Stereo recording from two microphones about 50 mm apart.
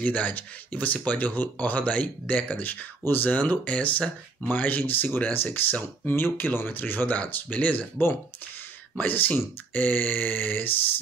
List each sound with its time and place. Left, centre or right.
0.0 s speech: left
8.9 s speech: left